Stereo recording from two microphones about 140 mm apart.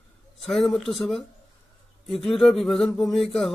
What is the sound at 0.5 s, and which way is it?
A man's voice, centre (ahead or behind).